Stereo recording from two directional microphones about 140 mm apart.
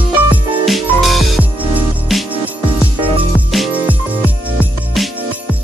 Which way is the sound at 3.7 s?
10° right (ahead or behind).